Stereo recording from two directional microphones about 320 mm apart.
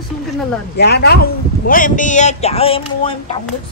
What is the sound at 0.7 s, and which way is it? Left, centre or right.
A man's voice, left.